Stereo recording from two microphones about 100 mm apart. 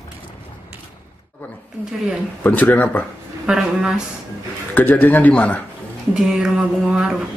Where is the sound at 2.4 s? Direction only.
15° left (ahead or behind).